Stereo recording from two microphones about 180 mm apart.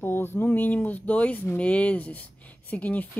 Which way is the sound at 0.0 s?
10° left (ahead or behind).